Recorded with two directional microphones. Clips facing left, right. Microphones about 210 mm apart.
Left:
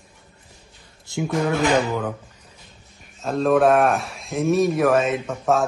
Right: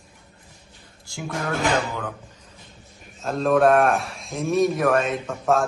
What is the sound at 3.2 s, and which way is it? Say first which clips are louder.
A man's voice: left 1 dB; centre (ahead or behind).